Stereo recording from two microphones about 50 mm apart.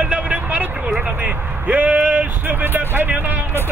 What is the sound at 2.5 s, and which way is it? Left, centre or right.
Speech, right.